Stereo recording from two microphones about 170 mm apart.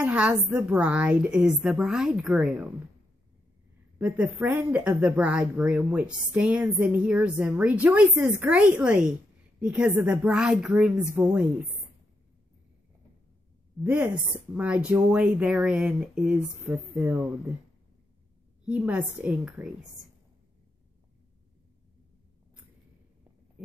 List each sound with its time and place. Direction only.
0.0 s speech: 10° right (ahead or behind)
4.0 s speech: 10° right (ahead or behind)
13.8 s speech: 10° right (ahead or behind)
18.7 s speech: 5° right (ahead or behind)